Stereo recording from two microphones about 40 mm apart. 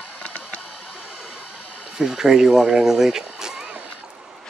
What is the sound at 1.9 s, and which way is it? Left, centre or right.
Speech, centre.